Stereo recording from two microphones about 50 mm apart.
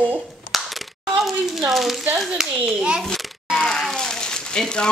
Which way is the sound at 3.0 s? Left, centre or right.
Centre.